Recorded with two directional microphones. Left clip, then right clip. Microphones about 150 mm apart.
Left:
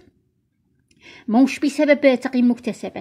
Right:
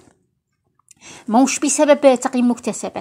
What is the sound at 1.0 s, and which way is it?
A woman's voice, centre (ahead or behind).